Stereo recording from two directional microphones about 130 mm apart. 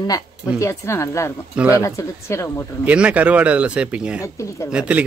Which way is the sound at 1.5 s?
15° right (ahead or behind).